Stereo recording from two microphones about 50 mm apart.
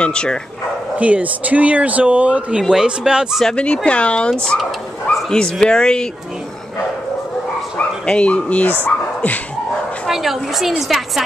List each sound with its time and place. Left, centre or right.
0.0 s speech: centre
0.9 s speech: right
2.7 s speech: centre
3.5 s speech: left
7.7 s speech: left
10.0 s a woman's voice: centre